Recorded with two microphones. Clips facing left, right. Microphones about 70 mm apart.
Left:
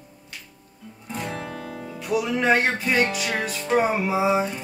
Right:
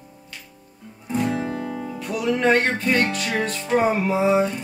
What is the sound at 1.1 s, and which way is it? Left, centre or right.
Speech, centre.